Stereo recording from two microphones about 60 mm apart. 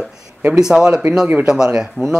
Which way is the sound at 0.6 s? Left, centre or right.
Centre.